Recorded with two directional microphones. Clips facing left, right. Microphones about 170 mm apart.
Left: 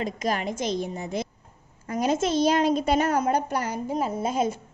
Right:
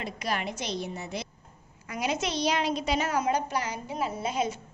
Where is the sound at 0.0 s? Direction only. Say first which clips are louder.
Left 5 dB; 40° left (ahead or behind).